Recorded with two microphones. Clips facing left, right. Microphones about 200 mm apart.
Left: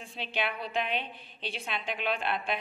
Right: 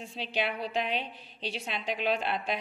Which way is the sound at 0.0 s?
35° right (ahead or behind).